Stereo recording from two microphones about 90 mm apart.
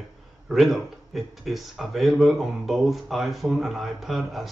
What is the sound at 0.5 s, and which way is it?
Speech, centre (ahead or behind).